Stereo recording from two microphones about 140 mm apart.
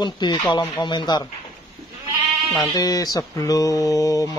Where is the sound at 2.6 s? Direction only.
25° left (ahead or behind).